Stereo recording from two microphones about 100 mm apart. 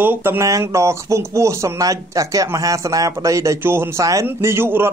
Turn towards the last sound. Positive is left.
turn(degrees=-25)  # may be behind; listen again after turning